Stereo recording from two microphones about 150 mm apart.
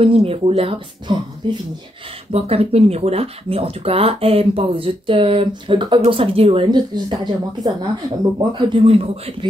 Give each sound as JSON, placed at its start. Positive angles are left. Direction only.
{"t": 0.0, "sound": "speech", "side_deg": -40}
{"t": 2.3, "sound": "speech", "side_deg": -40}